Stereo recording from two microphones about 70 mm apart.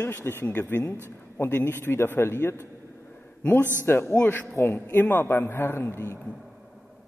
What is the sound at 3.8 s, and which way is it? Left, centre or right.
A man's voice, left.